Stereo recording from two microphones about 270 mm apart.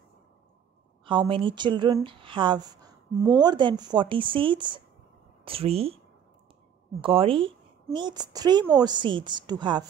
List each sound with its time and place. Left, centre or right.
1.0 s speech: centre
7.0 s a woman's voice: centre